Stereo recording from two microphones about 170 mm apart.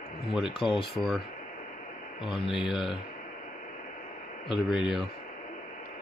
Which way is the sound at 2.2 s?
30° left (ahead or behind).